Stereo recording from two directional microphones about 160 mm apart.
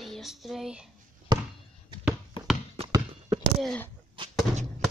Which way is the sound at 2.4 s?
35° left (ahead or behind).